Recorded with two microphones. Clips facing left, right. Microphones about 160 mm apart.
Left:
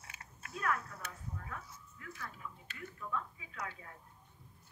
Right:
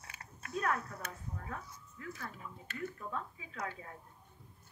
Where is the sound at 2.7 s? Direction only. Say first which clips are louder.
Right 2 dB; 35° right (ahead or behind).